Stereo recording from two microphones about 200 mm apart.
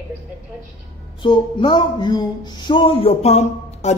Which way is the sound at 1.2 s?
25° left (ahead or behind).